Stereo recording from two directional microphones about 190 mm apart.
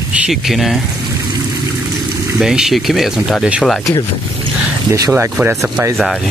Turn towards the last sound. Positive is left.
turn(degrees=-10)  # may be behind; listen again after turning